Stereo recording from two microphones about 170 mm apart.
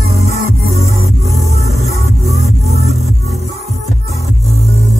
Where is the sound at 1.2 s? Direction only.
40° right (ahead or behind).